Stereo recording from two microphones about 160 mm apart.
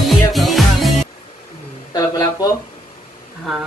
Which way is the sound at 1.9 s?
20° left (ahead or behind).